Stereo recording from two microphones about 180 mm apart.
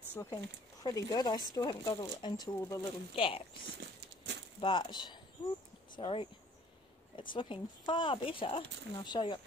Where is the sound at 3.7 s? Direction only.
70° right (ahead or behind).